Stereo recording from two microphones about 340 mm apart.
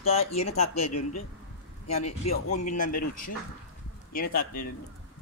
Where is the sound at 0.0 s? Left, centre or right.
Centre.